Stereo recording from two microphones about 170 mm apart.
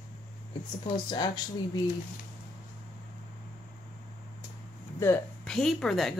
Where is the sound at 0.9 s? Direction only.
25° left (ahead or behind).